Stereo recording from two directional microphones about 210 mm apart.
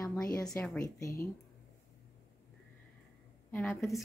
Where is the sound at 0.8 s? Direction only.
15° left (ahead or behind).